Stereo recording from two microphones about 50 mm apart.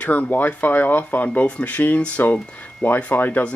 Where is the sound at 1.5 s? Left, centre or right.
Left.